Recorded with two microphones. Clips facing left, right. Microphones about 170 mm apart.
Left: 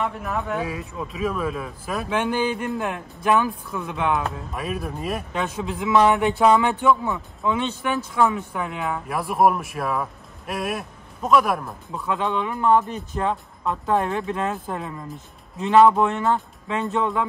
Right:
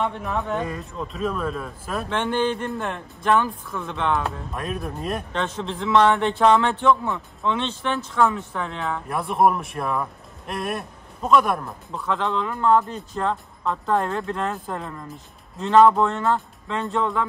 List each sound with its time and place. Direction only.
0.0 s speech: 5° left (ahead or behind)